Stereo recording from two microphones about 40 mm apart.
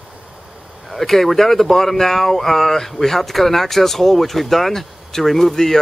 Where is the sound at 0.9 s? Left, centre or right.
Centre.